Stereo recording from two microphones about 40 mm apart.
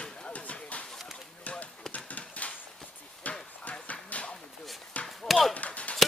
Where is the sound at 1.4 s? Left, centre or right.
Left.